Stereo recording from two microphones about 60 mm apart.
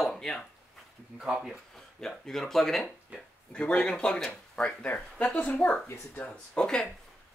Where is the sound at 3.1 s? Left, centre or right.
Right.